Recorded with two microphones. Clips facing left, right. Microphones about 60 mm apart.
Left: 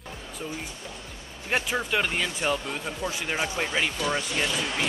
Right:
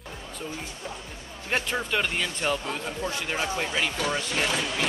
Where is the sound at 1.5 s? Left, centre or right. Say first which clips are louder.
Left 1 dB; centre.